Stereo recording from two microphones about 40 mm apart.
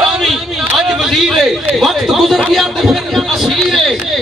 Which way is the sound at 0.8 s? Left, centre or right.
Centre.